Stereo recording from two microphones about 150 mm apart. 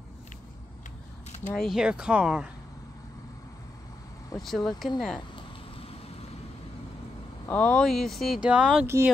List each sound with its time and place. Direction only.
1.5 s speech: centre (ahead or behind)
4.4 s speech: centre (ahead or behind)
7.4 s speech: 10° left (ahead or behind); by 8.8 s 5° right (ahead or behind)
8.8 s speech: 15° right (ahead or behind)